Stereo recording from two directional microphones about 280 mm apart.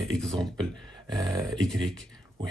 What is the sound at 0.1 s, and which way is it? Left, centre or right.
Speech, centre.